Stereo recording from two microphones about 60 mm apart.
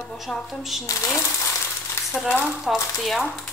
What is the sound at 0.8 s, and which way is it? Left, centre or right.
Speech, left.